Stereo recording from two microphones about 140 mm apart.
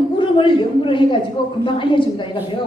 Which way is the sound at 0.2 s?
35° left (ahead or behind).